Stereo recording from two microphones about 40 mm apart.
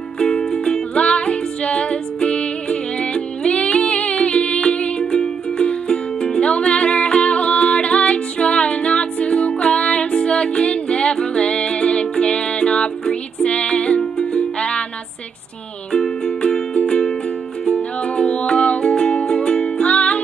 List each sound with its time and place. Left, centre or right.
0.2 s music: left
0.5 s music: centre
0.9 s music: left
15.9 s music: centre